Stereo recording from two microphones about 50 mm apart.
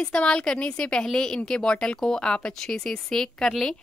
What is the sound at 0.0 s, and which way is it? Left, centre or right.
A woman's voice, left.